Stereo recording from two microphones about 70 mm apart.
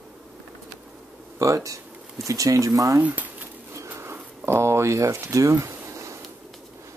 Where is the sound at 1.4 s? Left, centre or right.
Right.